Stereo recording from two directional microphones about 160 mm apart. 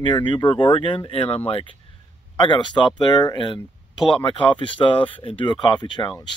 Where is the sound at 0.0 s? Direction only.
30° left (ahead or behind).